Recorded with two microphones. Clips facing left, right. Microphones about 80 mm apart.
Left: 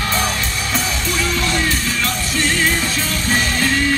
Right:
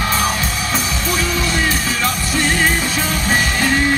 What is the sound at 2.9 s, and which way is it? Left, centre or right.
Music, centre.